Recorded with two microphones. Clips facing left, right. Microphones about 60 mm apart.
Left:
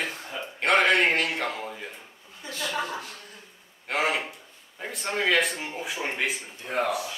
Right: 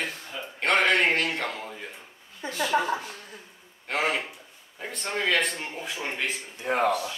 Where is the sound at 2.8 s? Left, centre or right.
Centre.